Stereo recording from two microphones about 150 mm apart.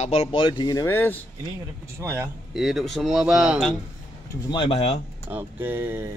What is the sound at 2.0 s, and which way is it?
Speech, 20° right (ahead or behind).